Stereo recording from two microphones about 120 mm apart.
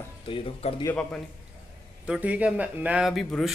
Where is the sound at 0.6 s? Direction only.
60° left (ahead or behind).